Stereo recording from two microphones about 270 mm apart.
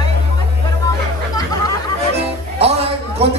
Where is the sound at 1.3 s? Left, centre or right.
Centre.